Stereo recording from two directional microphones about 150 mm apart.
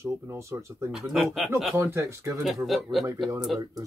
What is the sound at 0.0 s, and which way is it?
Speech, 20° right (ahead or behind).